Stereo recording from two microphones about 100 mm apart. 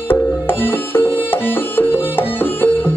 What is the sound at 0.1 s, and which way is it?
Music, 20° left (ahead or behind).